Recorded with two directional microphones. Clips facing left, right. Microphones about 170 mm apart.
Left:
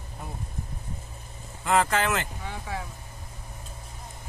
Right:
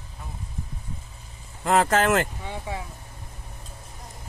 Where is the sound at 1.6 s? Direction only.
40° right (ahead or behind).